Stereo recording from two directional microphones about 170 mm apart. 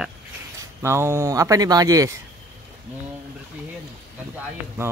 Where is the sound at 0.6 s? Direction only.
15° right (ahead or behind).